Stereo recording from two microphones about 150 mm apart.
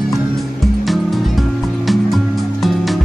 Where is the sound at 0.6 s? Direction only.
Centre (ahead or behind).